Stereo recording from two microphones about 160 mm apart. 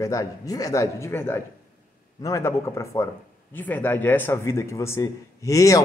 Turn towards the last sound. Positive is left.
turn(degrees=20)  # may be behind; listen again after turning